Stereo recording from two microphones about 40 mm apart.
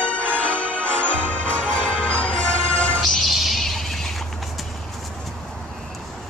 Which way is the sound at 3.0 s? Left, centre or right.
Centre.